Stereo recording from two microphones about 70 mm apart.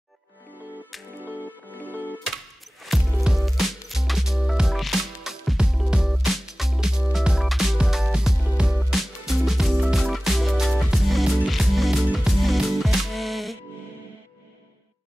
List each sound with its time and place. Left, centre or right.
1.7 s music: left
2.9 s music: centre